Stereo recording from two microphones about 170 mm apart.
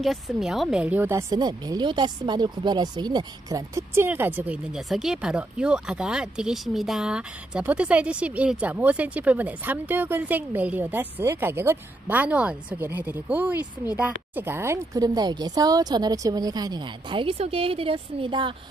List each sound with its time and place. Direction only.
0.0 s speech: centre (ahead or behind); by 18.5 s 30° right (ahead or behind)